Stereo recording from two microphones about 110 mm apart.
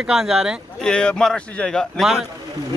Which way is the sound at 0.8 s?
5° left (ahead or behind).